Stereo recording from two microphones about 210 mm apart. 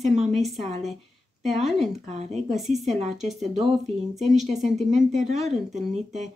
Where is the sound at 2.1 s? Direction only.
30° right (ahead or behind).